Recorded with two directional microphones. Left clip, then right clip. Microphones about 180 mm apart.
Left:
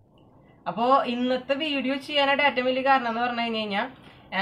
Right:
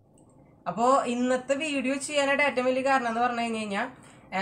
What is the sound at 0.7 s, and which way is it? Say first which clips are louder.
Speech: left 2 dB; 15° right (ahead or behind).